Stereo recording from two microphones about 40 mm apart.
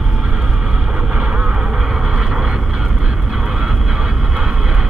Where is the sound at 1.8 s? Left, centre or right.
Centre.